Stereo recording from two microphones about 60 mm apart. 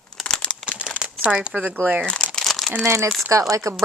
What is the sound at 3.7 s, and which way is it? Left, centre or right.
Speech, right.